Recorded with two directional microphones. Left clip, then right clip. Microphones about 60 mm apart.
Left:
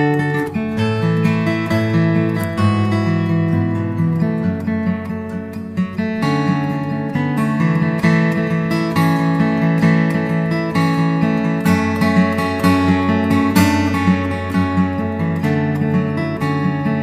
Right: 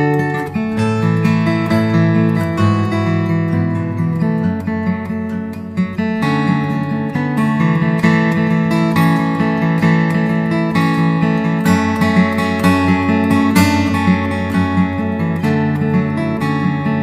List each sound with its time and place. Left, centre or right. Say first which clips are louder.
1.2 s music: right 2 dB; right
7.6 s music: right 2 dB; right